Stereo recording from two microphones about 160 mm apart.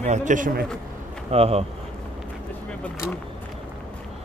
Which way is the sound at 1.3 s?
40° right (ahead or behind).